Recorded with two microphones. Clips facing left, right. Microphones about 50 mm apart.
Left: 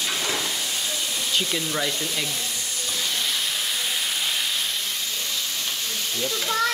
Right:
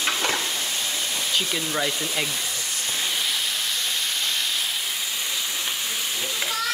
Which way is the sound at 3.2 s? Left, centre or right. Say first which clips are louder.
Even; centre.